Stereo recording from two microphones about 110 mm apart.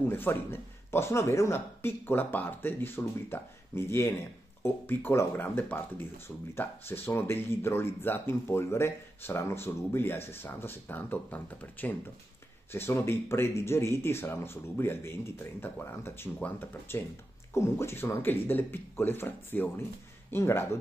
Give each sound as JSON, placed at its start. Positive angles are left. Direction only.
{"t": 0.0, "sound": "speech", "side_deg": 20}